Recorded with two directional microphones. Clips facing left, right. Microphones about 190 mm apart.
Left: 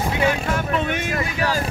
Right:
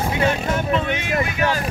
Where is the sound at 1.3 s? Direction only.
35° left (ahead or behind).